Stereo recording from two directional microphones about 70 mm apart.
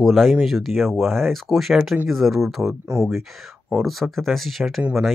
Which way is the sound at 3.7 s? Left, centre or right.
Centre.